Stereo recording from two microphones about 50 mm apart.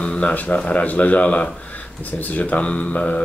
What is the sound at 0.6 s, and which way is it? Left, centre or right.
Speech, left.